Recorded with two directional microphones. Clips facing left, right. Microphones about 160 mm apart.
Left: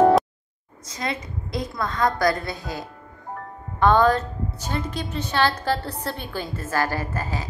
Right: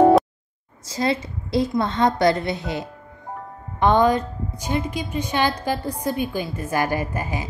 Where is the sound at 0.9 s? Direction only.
30° right (ahead or behind).